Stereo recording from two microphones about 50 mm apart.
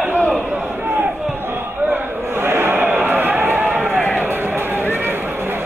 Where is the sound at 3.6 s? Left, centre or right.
Right.